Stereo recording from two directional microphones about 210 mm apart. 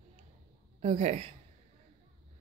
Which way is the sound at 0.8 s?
30° right (ahead or behind).